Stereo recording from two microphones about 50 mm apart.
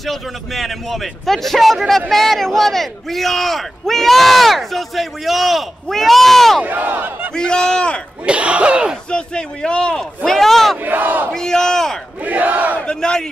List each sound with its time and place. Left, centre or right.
0.0 s a man's voice: centre
6.6 s speech: right
7.3 s a man's voice: centre
8.3 s battle cry: right
9.1 s a man's voice: centre
10.8 s speech: right
11.3 s battle cry: centre
12.2 s battle cry: right
13.0 s a man's voice: centre